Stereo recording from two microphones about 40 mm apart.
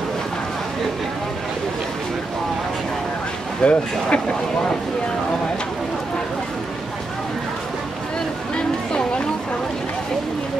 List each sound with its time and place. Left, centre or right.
3.6 s speech: left